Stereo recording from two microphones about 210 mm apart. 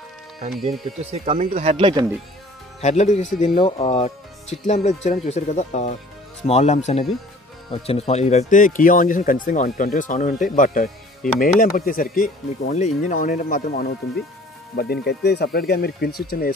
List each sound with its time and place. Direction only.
0.7 s speech: 30° right (ahead or behind)
2.8 s speech: 35° left (ahead or behind)